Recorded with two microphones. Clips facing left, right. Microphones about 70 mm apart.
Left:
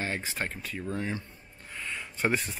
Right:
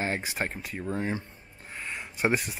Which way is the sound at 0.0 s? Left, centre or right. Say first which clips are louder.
Right 3 dB; centre.